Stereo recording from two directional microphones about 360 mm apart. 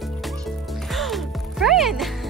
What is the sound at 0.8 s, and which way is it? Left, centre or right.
Music, centre.